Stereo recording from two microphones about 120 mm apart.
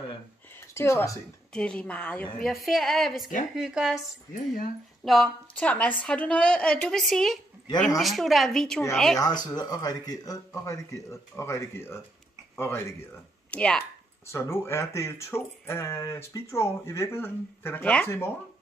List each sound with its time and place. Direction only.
0.7 s speech: 25° left (ahead or behind)
1.5 s a woman's voice: 10° left (ahead or behind)
2.4 s a woman's voice: centre (ahead or behind)
5.0 s a woman's voice: centre (ahead or behind)
9.2 s speech: 35° left (ahead or behind); by 13.8 s 10° left (ahead or behind)
14.3 s speech: 20° left (ahead or behind)